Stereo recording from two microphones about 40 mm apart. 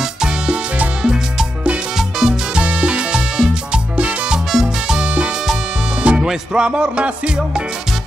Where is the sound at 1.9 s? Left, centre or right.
Centre.